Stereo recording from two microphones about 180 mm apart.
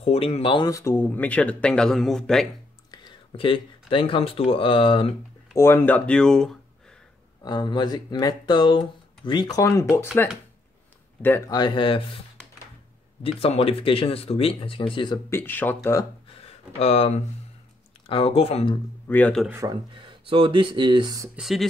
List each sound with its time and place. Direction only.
0.0 s speech: 35° left (ahead or behind); by 2.4 s centre (ahead or behind)
2.9 s speech: 25° left (ahead or behind)
5.6 s speech: 10° left (ahead or behind)
7.4 s speech: 25° left (ahead or behind)
11.2 s speech: 15° left (ahead or behind)
13.2 s speech: 35° left (ahead or behind)
15.2 s speech: 15° left (ahead or behind)
16.3 s a sound: 35° left (ahead or behind)
18.0 s speech: 30° left (ahead or behind)
19.0 s speech: 10° left (ahead or behind)
19.6 s speech: 25° right (ahead or behind)
21.4 s speech: centre (ahead or behind)